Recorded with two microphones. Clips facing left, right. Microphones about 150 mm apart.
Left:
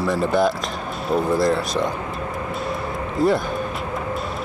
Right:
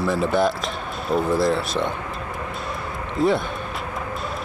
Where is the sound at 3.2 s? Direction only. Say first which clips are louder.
Left 1 dB; centre (ahead or behind).